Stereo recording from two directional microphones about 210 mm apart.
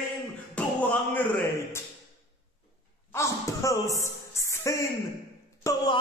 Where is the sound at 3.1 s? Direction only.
15° left (ahead or behind).